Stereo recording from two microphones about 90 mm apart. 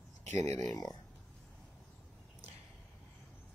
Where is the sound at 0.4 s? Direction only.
40° left (ahead or behind).